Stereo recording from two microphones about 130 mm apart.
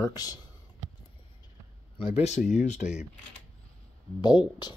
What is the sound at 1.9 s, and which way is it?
Speech, 55° left (ahead or behind).